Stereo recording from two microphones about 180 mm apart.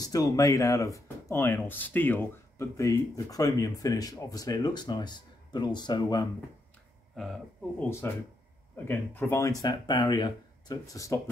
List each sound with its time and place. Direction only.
0.0 s speech: 20° left (ahead or behind)
7.2 s speech: centre (ahead or behind)
8.0 s speech: 15° left (ahead or behind)